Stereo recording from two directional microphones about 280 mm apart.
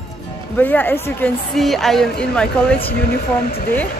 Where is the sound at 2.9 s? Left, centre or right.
Left.